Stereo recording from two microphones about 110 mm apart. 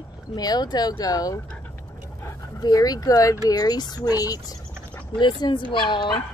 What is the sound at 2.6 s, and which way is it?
A child's voice, 35° left (ahead or behind).